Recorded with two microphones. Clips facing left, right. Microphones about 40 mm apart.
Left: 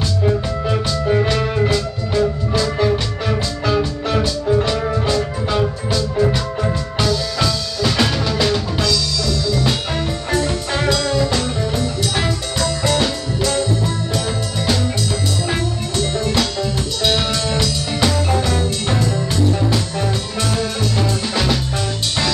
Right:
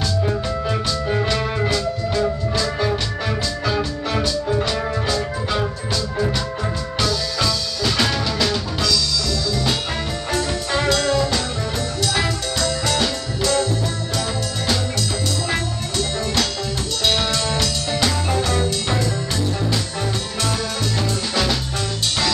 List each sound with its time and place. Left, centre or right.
0.7 s music: centre
12.8 s music: centre
16.0 s music: centre